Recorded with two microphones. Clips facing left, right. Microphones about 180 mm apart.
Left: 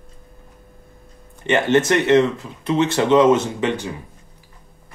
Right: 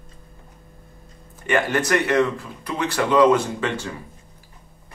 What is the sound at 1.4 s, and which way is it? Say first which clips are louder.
Speech: left 5 dB; 25° left (ahead or behind).